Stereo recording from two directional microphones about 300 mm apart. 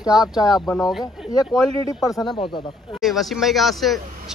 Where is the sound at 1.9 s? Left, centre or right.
Centre.